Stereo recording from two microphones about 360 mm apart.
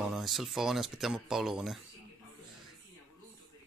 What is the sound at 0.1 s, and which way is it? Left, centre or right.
Speech, centre.